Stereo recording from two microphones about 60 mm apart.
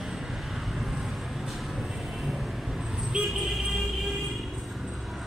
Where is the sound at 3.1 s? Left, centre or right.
Centre.